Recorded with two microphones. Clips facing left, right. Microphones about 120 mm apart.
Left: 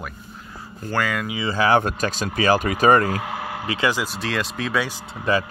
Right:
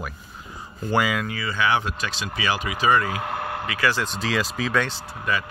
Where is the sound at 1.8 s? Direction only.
45° left (ahead or behind).